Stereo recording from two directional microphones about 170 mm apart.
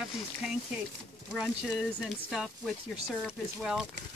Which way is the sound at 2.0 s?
Centre (ahead or behind).